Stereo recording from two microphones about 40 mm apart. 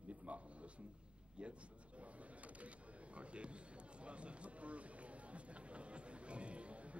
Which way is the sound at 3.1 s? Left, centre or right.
Right.